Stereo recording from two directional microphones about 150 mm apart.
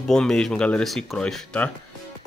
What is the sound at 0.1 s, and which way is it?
Speech, 5° left (ahead or behind).